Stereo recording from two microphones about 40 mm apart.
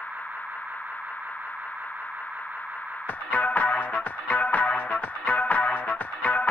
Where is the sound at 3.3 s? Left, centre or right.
Left.